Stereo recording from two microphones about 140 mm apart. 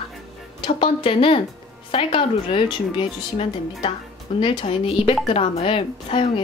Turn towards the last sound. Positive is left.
turn(degrees=45)  # may be behind; listen again after turning